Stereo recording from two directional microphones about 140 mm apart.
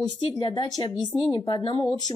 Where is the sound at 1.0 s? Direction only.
Centre (ahead or behind).